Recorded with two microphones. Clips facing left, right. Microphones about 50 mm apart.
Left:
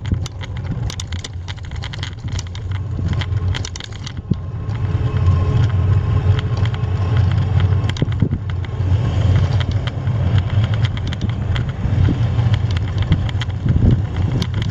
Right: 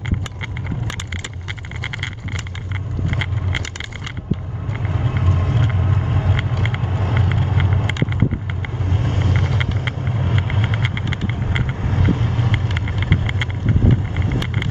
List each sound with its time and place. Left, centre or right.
3.1 s vehicle: right
4.8 s vehicle: centre
6.3 s vehicle: right
6.8 s vehicle: centre; by 8.2 s right
8.9 s vehicle: centre
9.3 s vehicle: centre
9.6 s vehicle: right
10.0 s vehicle: centre
10.3 s vehicle: right
11.8 s vehicle: centre
12.4 s vehicle: right